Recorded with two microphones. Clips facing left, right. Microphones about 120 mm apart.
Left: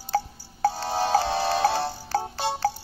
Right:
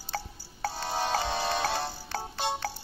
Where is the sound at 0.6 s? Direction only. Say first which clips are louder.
Left 9 dB; 35° left (ahead or behind).